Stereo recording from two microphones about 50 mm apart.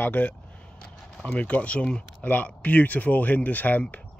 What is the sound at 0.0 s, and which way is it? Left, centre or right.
Speech, left.